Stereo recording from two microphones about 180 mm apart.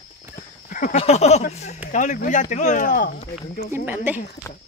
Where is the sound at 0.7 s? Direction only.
50° left (ahead or behind).